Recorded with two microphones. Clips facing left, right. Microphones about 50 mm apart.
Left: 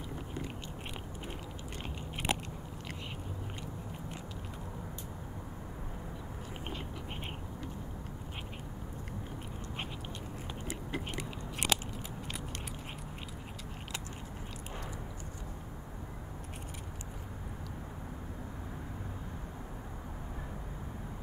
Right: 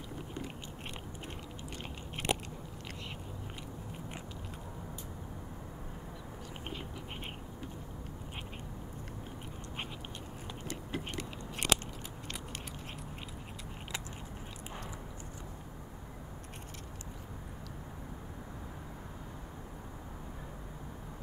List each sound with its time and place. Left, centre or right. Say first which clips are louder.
2.2 s biting: even; centre
11.7 s biting: right 2 dB; centre